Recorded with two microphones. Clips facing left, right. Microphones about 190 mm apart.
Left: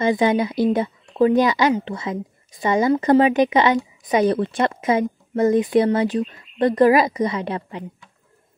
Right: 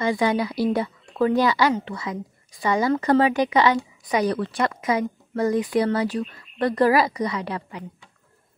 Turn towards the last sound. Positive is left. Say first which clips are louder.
# left 3 dB
turn(degrees=25)  # may be behind; listen again after turning